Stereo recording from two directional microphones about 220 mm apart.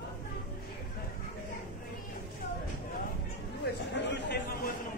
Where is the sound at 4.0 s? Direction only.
50° left (ahead or behind).